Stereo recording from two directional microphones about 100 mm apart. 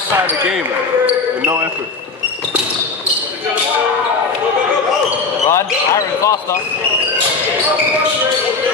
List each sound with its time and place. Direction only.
1.0 s speech: 20° right (ahead or behind)
5.5 s speech: 30° left (ahead or behind)